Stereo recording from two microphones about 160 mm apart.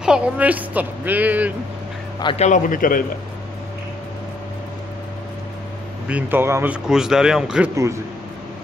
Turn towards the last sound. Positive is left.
turn(degrees=-5)  # may be behind; listen again after turning